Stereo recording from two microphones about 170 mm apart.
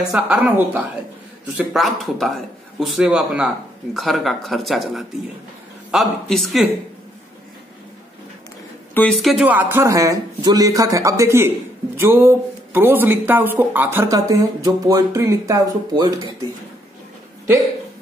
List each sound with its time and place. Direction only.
0.1 s a man's voice: 10° right (ahead or behind)
8.9 s speech: 5° left (ahead or behind); by 16.1 s 20° right (ahead or behind)